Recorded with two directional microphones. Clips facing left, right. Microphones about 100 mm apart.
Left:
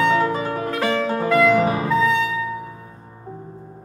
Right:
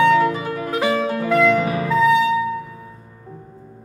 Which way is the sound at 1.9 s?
Centre (ahead or behind).